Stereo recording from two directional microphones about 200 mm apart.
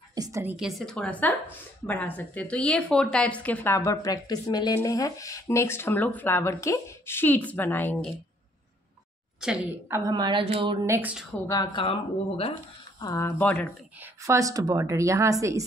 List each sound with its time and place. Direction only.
0.1 s a woman's voice: 15° right (ahead or behind); by 8.1 s 10° left (ahead or behind)
9.4 s a woman's voice: 10° right (ahead or behind); by 10.9 s 25° right (ahead or behind)
10.9 s a woman's voice: 10° right (ahead or behind)
11.4 s speech: 20° left (ahead or behind)
13.0 s a woman's voice: 15° left (ahead or behind)
13.9 s a woman's voice: 10° right (ahead or behind)